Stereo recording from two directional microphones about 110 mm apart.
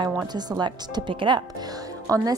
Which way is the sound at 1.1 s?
50° right (ahead or behind).